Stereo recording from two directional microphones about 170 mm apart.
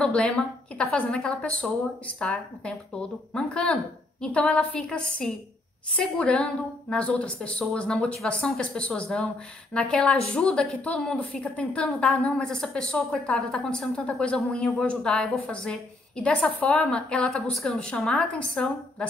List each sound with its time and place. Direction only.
0.0 s a woman's voice: 5° left (ahead or behind)